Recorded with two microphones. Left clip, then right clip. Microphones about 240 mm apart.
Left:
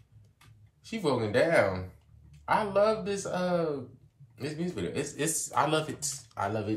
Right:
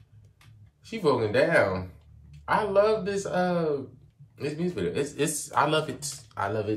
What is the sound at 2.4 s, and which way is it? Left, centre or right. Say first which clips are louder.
Speech: right 3 dB; centre.